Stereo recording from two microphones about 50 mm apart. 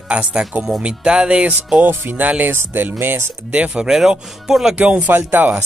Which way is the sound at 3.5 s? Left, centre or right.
Right.